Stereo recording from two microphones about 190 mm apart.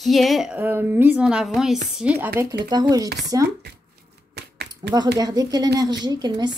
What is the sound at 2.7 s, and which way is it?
Speech, 20° right (ahead or behind).